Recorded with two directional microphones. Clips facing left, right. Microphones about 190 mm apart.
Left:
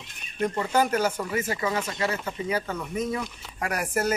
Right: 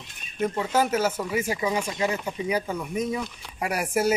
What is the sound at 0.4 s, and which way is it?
Speech, 5° right (ahead or behind).